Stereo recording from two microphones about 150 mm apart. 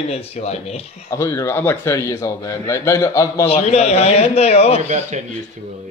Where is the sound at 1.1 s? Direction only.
20° left (ahead or behind).